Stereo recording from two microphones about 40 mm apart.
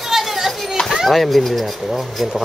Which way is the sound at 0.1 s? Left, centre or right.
Centre.